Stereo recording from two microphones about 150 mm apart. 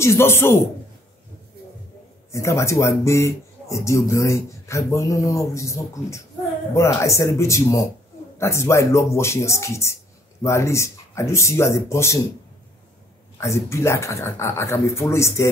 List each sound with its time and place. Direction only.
0.0 s speech: 15° left (ahead or behind)
2.3 s a man's voice: 20° left (ahead or behind)
13.4 s a man's voice: 20° left (ahead or behind)